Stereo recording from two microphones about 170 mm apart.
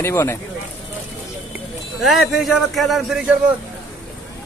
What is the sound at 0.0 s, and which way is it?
Speech, 15° left (ahead or behind).